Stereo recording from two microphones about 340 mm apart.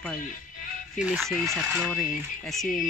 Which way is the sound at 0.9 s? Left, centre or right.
Centre.